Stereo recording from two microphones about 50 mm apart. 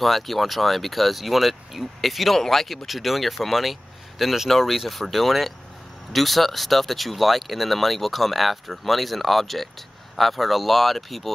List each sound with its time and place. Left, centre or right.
0.0 s speech: centre